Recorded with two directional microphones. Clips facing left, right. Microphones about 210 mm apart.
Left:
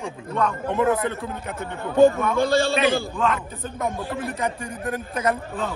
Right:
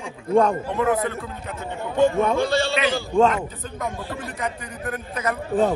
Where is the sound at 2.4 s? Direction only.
50° left (ahead or behind).